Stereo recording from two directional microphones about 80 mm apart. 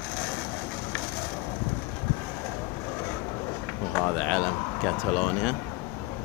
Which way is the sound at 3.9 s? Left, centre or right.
Centre.